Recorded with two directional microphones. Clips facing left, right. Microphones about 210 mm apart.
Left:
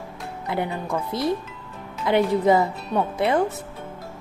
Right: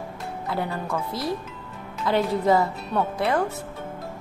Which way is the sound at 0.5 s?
20° left (ahead or behind).